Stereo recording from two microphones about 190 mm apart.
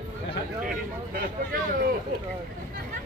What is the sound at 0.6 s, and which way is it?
Speech, 50° right (ahead or behind).